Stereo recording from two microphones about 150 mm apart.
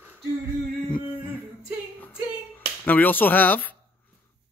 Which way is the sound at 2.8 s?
10° left (ahead or behind).